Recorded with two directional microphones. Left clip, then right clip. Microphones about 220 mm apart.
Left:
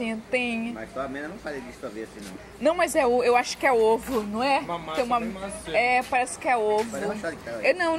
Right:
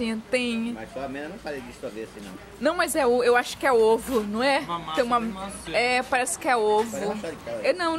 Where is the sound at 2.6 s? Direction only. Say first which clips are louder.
Left 1 dB; 10° right (ahead or behind).